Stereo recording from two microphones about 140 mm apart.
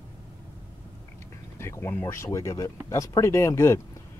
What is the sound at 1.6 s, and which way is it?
Speech, 15° left (ahead or behind).